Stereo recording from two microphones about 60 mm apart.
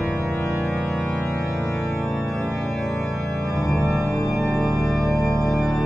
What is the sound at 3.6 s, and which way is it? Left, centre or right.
Organ, left.